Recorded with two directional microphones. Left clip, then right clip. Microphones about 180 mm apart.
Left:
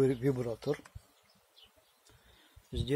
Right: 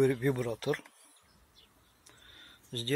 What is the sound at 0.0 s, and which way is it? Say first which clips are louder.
Speech: right 1 dB; 5° right (ahead or behind).